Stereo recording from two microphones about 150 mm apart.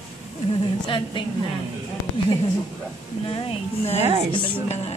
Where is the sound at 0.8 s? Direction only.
35° left (ahead or behind).